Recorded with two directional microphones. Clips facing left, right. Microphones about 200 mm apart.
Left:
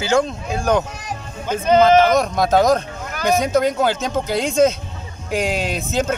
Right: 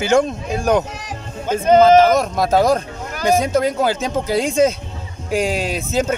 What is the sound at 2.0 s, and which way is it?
Speech, 5° right (ahead or behind).